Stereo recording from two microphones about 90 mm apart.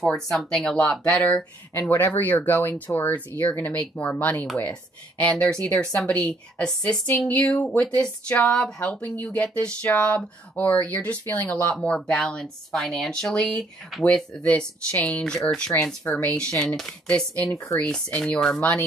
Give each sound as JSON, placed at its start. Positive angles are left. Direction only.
{"t": 0.0, "sound": "speech", "side_deg": 5}
{"t": 11.7, "sound": "speech", "side_deg": 5}